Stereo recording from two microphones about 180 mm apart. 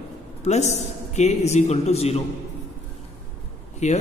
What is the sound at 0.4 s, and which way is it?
A man's voice, 35° left (ahead or behind).